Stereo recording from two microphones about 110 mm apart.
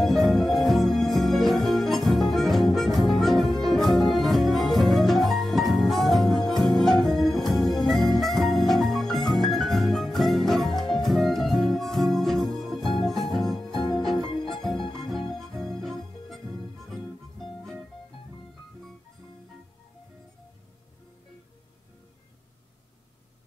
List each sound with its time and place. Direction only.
0.3 s music: centre (ahead or behind)